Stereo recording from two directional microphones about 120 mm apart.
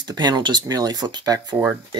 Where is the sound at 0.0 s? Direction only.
35° right (ahead or behind).